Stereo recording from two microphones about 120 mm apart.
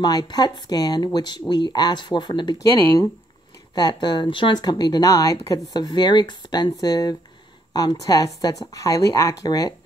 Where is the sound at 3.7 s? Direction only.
35° left (ahead or behind).